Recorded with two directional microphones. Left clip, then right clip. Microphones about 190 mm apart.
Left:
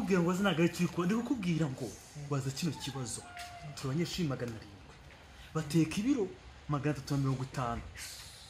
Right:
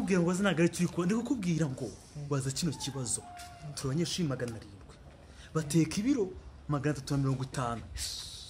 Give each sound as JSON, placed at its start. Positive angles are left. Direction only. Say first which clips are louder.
{"t": 0.1, "sound": "speech", "louder": "right 1 dB", "side_deg": 0}
{"t": 5.5, "sound": "speech", "louder": "right 2 dB", "side_deg": -10}